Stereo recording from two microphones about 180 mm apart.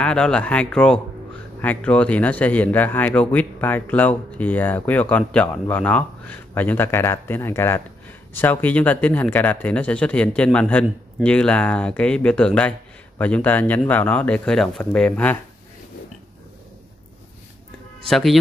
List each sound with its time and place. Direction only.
0.0 s speech: 5° left (ahead or behind)
18.0 s speech: centre (ahead or behind)